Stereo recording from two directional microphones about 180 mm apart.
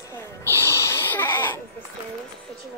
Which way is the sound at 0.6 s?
15° left (ahead or behind).